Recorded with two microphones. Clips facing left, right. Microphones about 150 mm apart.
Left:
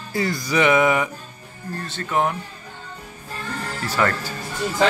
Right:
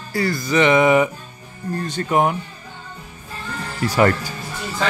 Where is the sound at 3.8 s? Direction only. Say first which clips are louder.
Right 6 dB; 15° right (ahead or behind).